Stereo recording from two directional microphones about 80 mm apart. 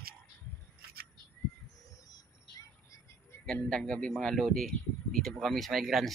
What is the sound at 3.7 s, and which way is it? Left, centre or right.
A man's voice, centre.